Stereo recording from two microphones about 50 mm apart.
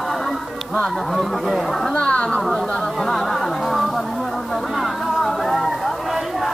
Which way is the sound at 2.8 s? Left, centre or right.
Centre.